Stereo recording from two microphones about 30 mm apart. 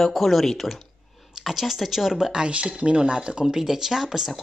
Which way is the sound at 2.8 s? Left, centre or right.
Right.